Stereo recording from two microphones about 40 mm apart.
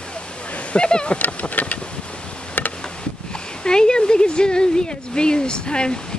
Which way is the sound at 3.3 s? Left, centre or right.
Centre.